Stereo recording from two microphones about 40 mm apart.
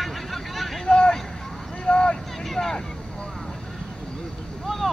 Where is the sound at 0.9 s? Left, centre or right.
Left.